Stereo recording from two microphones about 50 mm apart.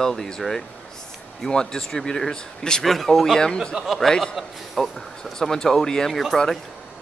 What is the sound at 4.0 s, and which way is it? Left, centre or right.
Speech, centre.